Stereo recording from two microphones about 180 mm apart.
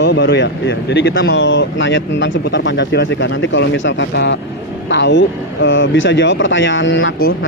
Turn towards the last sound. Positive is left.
turn(degrees=85)